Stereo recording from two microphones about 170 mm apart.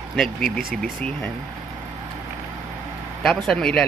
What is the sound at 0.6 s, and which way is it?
Speech, 55° right (ahead or behind).